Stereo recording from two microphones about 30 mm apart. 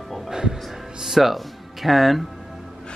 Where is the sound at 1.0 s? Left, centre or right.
Centre.